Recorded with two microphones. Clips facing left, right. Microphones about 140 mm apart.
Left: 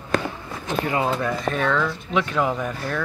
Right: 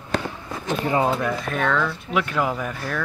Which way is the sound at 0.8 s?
20° right (ahead or behind).